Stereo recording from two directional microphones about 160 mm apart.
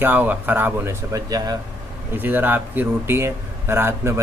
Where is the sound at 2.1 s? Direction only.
10° right (ahead or behind).